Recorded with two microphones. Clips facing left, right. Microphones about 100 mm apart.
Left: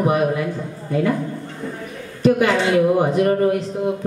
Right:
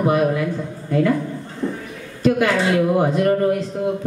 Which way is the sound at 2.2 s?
10° left (ahead or behind).